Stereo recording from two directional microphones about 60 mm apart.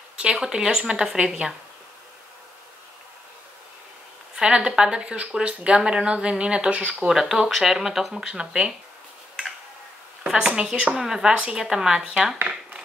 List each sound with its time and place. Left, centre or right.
0.2 s speech: centre
4.4 s speech: centre
7.1 s speech: centre
10.2 s speech: centre